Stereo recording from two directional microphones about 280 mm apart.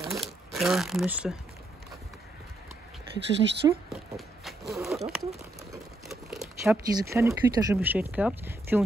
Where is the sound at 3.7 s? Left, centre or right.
Centre.